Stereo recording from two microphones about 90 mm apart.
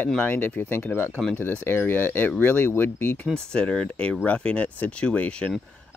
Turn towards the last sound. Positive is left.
turn(degrees=15)  # may be behind; listen again after turning